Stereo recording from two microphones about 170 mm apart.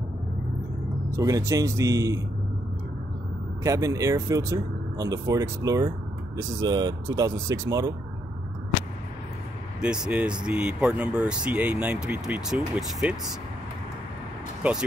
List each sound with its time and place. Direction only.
1.1 s speech: 20° right (ahead or behind)
3.6 s speech: 20° right (ahead or behind)
9.8 s speech: 5° right (ahead or behind)
14.6 s speech: 5° right (ahead or behind)